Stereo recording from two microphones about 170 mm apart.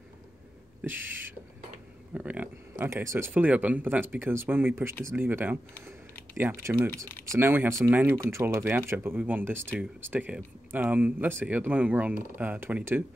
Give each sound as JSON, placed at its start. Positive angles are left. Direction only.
{"t": 0.8, "sound": "speech", "side_deg": -10}